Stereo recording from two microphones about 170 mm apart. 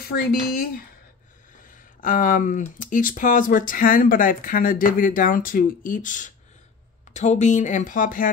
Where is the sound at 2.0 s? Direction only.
50° left (ahead or behind).